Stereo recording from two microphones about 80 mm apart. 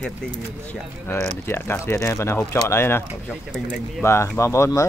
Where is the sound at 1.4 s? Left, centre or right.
Left.